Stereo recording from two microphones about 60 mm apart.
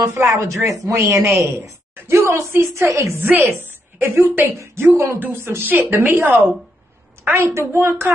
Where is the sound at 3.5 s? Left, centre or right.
Right.